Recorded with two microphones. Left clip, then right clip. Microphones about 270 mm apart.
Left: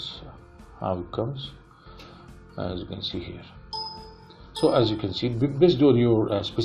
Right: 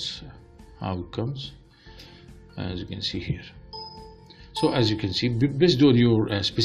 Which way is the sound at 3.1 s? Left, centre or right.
Right.